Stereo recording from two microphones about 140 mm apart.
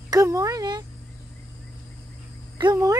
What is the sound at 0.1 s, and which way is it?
Speech, 25° right (ahead or behind).